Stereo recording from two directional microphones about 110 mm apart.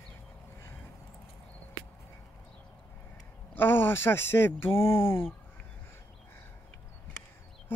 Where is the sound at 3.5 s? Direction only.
20° left (ahead or behind).